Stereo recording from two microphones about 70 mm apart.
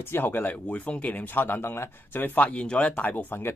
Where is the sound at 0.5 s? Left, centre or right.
Centre.